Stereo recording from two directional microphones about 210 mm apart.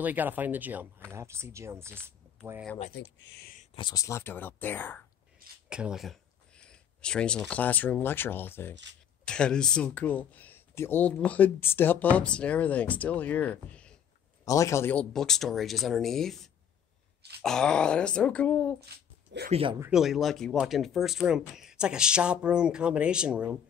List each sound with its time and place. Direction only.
0.0 s speech: 10° right (ahead or behind)
2.0 s a sound: 10° right (ahead or behind)
2.9 s speech: 60° left (ahead or behind)
3.7 s speech: 20° left (ahead or behind)
5.7 s speech: 5° right (ahead or behind)
17.4 s speech: 5° left (ahead or behind)
19.5 s speech: 25° right (ahead or behind)
19.8 s speech: centre (ahead or behind)